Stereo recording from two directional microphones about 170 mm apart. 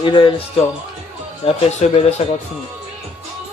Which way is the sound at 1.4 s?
35° left (ahead or behind).